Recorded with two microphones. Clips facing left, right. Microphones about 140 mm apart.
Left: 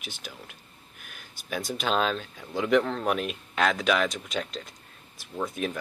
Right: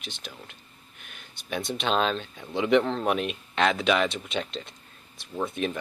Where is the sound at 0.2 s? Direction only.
5° left (ahead or behind).